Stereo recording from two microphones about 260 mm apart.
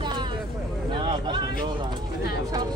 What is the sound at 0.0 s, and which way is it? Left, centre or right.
Vehicle, centre.